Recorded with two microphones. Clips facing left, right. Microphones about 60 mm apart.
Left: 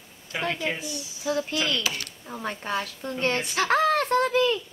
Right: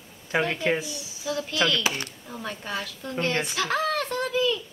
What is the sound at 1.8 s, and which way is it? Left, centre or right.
Speech, right.